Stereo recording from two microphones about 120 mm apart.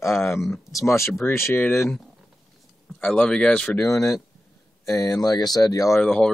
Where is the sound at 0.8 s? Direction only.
25° left (ahead or behind).